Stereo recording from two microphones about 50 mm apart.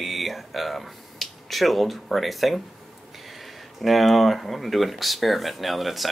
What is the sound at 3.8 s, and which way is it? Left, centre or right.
Speech, centre.